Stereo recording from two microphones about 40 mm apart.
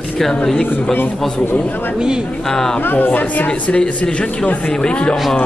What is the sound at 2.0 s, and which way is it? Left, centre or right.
Speech, right.